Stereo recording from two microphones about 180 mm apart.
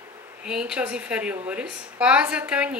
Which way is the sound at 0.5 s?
5° right (ahead or behind).